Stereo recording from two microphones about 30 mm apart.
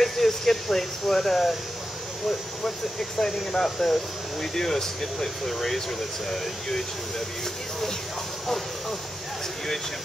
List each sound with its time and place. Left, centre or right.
0.0 s speech: centre
3.2 s speech: centre